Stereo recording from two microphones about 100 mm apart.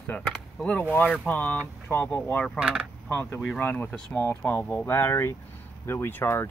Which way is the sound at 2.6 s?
10° right (ahead or behind).